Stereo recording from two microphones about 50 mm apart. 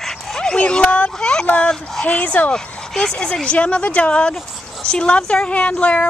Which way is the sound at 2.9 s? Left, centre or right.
Centre.